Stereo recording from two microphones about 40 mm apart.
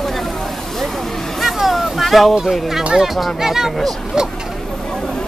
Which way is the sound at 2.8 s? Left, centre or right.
Centre.